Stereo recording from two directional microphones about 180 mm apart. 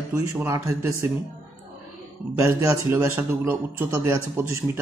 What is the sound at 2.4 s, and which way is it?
A man's voice, 15° right (ahead or behind).